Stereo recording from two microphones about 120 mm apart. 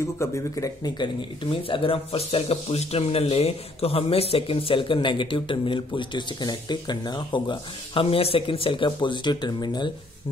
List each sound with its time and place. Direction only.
0.2 s speech: 25° left (ahead or behind)